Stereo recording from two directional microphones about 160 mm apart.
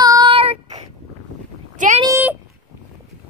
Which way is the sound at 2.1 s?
15° right (ahead or behind).